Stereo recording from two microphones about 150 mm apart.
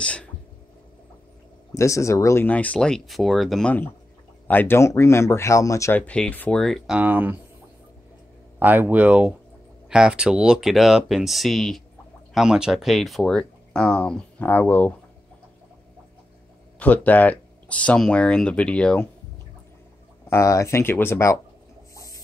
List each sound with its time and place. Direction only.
0.0 s speech: 10° left (ahead or behind)
1.7 s speech: 20° left (ahead or behind); by 3.7 s centre (ahead or behind)
4.5 s speech: 15° left (ahead or behind)
7.0 s speech: 10° right (ahead or behind)
8.5 s speech: 10° right (ahead or behind); by 15.0 s 10° left (ahead or behind)
16.8 s speech: 10° left (ahead or behind)
20.2 s speech: 20° left (ahead or behind)